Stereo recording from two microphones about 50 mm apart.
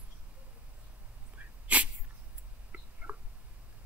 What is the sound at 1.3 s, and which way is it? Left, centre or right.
Sneeze, right.